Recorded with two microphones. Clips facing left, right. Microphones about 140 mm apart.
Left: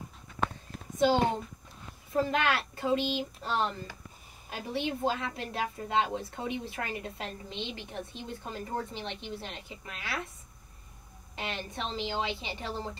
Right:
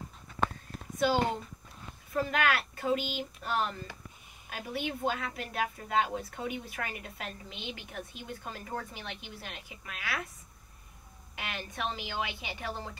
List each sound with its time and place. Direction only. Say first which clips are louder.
2.2 s a woman's voice: left 1 dB; 30° left (ahead or behind)
11.3 s a woman's voice: left 2 dB; 30° left (ahead or behind)